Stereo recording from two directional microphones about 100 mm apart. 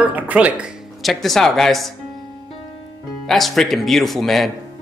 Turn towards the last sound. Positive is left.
turn(degrees=0)  # may be behind; listen again after turning